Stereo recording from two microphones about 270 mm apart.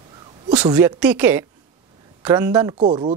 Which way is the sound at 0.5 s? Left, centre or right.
Centre.